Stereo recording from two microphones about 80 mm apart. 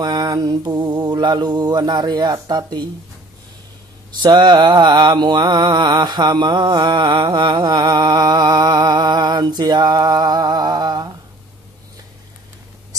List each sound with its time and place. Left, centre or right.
0.0 s mantra: right
4.3 s mantra: right